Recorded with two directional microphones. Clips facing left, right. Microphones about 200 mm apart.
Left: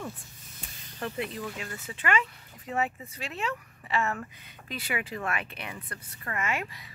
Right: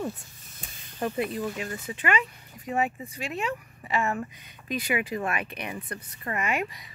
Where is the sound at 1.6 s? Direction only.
15° right (ahead or behind).